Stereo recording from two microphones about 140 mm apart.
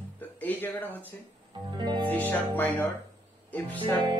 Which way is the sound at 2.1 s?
15° left (ahead or behind).